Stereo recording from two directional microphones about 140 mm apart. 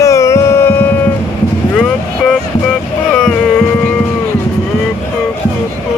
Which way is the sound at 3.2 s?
5° left (ahead or behind).